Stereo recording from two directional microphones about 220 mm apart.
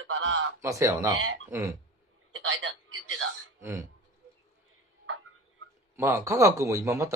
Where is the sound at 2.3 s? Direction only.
65° right (ahead or behind).